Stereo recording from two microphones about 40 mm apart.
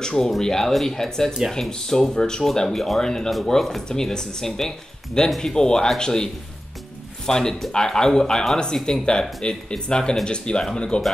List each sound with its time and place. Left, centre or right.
0.2 s speech: centre